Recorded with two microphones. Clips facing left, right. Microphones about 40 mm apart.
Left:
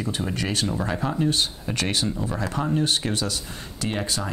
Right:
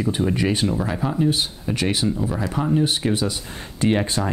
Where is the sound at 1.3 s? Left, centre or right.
Centre.